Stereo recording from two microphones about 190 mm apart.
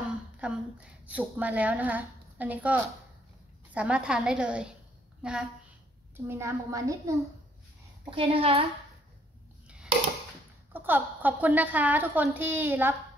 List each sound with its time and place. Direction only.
0.4 s a woman's voice: 5° right (ahead or behind)
8.1 s a woman's voice: 30° right (ahead or behind)
10.7 s a woman's voice: 10° right (ahead or behind)